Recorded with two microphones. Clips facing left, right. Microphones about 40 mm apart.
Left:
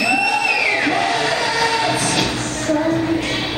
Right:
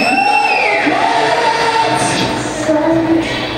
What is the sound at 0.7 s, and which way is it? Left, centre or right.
Music, centre.